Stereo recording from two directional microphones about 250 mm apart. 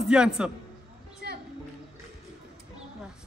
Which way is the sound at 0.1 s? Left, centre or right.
Centre.